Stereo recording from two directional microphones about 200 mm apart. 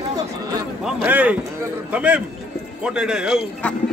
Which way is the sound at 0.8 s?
5° right (ahead or behind).